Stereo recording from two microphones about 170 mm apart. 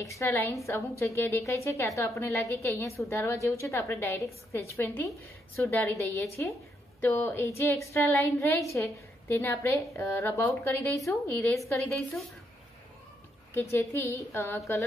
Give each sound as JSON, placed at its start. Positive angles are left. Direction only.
{"t": 0.0, "sound": "a woman's voice", "side_deg": 15}
{"t": 13.6, "sound": "a woman's voice", "side_deg": 15}